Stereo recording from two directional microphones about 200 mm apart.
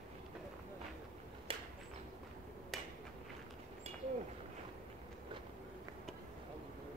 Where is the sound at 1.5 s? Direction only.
30° right (ahead or behind).